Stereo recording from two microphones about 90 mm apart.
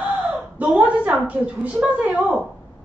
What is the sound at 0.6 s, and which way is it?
Speech, 10° right (ahead or behind).